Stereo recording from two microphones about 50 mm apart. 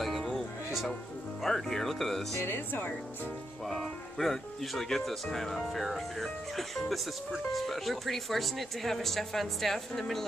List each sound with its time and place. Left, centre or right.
0.0 s music: centre
1.4 s speech: centre
2.4 s speech: left
3.6 s speech: centre